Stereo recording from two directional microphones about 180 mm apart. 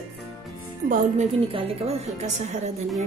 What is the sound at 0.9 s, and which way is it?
A woman's voice, 35° right (ahead or behind).